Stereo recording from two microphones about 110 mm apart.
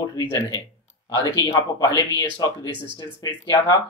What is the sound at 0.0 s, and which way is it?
Speech, 35° left (ahead or behind).